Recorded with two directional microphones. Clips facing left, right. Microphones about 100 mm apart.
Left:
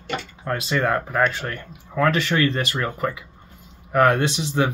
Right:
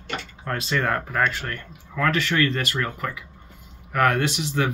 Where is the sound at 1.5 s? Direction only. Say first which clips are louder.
Left 2 dB; 25° left (ahead or behind).